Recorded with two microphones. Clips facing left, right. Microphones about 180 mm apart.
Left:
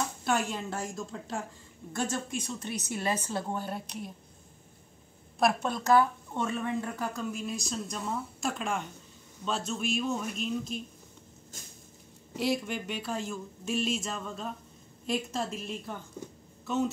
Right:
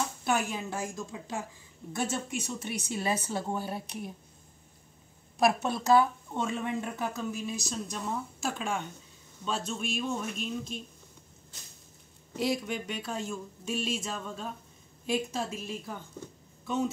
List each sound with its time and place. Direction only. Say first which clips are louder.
0.2 s speech: even; 5° right (ahead or behind)
2.4 s a woman's voice: even; 10° right (ahead or behind)
5.4 s a woman's voice: right 1 dB; 5° right (ahead or behind)
7.2 s speech: even; 5° right (ahead or behind)
11.5 s a sound: left 4 dB; 45° left (ahead or behind)
12.4 s speech: even; centre (ahead or behind)